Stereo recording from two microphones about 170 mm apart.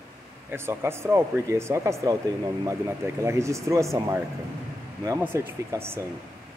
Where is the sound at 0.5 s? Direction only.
15° right (ahead or behind).